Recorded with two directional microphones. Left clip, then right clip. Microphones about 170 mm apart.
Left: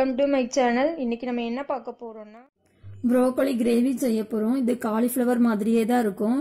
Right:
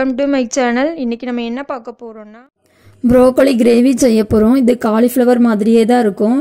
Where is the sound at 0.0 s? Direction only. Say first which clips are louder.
Right 7 dB; 35° right (ahead or behind).